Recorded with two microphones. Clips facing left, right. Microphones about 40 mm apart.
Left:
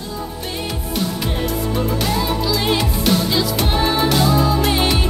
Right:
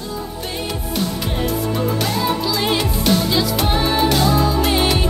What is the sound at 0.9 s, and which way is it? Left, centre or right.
Music, centre.